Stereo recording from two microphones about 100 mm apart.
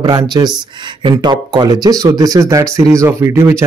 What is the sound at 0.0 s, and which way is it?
Speech, 40° right (ahead or behind).